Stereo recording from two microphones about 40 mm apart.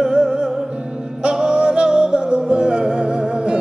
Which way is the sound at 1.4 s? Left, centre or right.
Right.